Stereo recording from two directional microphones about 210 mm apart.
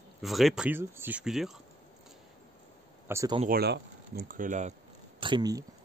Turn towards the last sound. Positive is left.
turn(degrees=-20)  # may be behind; listen again after turning